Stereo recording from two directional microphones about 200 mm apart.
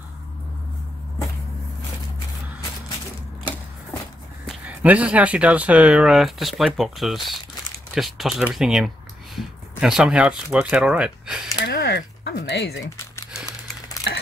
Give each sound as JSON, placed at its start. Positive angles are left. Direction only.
{"t": 4.5, "sound": "speech", "side_deg": -5}
{"t": 11.6, "sound": "speech", "side_deg": 55}
{"t": 12.8, "sound": "crumpling", "side_deg": 15}